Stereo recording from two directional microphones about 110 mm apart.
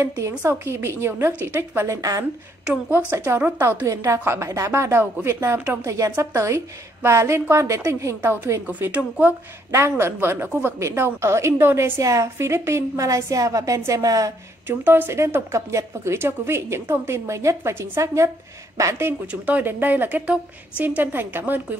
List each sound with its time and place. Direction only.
0.0 s a woman's voice: 25° right (ahead or behind)
1.9 s speech: 35° right (ahead or behind)
2.6 s a woman's voice: 10° right (ahead or behind)
3.8 s a woman's voice: 30° right (ahead or behind)
14.7 s a woman's voice: 20° right (ahead or behind)